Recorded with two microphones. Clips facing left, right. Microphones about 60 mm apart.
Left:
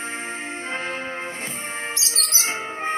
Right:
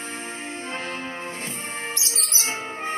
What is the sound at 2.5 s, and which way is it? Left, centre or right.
Music, left.